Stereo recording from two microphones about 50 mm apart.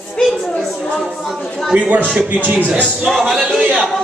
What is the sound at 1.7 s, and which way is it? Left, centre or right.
A man's voice, right.